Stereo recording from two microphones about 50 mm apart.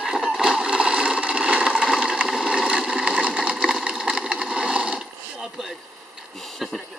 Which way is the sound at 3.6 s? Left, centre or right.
Centre.